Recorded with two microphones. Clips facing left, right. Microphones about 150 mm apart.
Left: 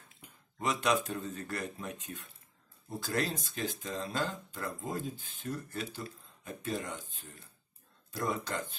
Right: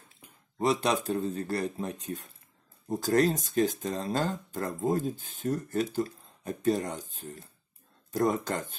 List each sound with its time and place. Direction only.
0.6 s speech: 35° right (ahead or behind)